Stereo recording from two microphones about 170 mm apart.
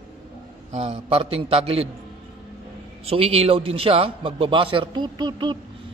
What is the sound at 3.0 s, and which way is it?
A man's voice, 35° right (ahead or behind).